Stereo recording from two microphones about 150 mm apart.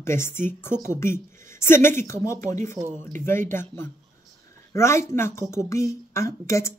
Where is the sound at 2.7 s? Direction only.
55° right (ahead or behind).